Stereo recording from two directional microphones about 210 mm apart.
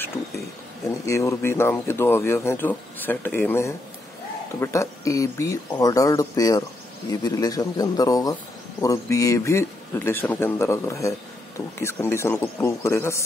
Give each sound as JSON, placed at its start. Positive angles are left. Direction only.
{"t": 1.0, "sound": "speech", "side_deg": 15}